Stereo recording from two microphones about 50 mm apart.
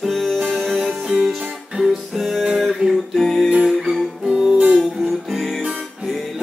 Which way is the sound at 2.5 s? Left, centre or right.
Centre.